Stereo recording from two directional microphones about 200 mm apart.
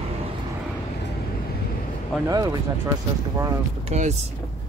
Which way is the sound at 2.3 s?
20° right (ahead or behind).